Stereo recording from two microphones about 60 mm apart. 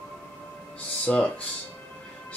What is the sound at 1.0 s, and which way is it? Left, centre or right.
Speech, centre.